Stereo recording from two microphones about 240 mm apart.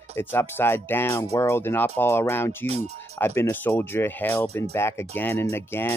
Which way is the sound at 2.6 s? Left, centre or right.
Right.